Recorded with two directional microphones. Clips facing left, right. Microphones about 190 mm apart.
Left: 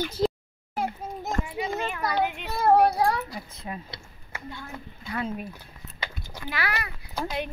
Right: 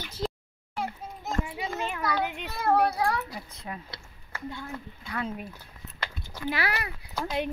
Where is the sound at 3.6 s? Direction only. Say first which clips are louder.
Left 2 dB; 15° left (ahead or behind).